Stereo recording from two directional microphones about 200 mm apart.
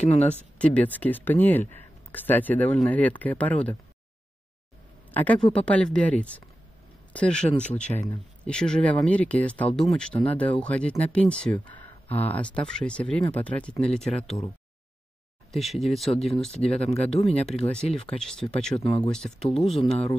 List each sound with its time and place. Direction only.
0.0 s speech: 35° left (ahead or behind)
0.6 s speech: 5° left (ahead or behind)
5.1 s speech: 5° left (ahead or behind)
15.5 s speech: centre (ahead or behind)
16.8 s speech: 30° left (ahead or behind)
18.2 s speech: 5° left (ahead or behind)